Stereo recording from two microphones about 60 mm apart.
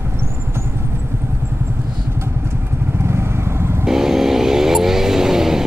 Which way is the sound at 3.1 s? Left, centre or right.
Right.